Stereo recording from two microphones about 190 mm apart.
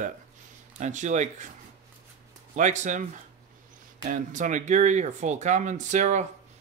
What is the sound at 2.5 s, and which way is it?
Speech, 40° right (ahead or behind).